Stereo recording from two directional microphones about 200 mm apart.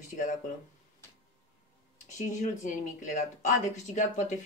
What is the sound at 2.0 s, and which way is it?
A woman's voice, 35° left (ahead or behind).